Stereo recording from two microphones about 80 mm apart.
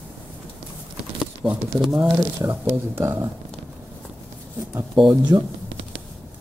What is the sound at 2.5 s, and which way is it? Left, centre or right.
Speech, right.